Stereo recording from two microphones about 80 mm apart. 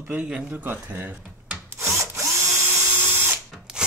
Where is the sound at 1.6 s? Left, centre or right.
Right.